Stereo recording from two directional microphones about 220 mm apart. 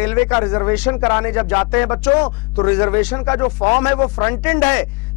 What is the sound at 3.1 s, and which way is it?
A man's voice, 20° left (ahead or behind).